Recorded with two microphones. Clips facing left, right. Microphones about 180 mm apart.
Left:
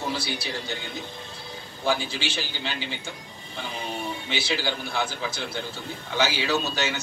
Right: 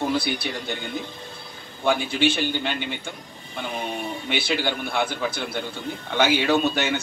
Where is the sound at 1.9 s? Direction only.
60° right (ahead or behind).